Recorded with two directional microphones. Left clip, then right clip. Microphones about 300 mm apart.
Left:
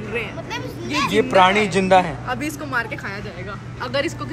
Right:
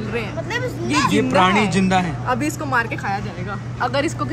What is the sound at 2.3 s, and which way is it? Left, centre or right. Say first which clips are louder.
Speech: right 4 dB; right.